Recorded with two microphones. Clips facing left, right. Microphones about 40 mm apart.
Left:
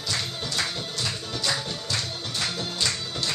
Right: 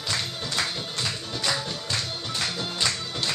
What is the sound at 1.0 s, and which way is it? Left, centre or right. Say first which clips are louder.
Music: even; centre.